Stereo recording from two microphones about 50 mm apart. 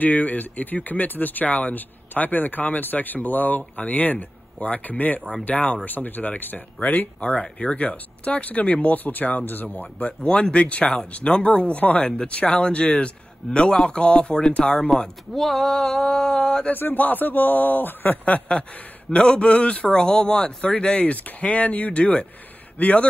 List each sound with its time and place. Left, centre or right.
0.0 s speech: left
7.2 s speech: left
10.0 s speech: left
15.3 s speech: centre
16.7 s speech: left
18.2 s speech: left